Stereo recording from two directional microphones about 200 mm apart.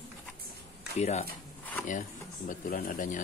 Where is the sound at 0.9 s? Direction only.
30° left (ahead or behind).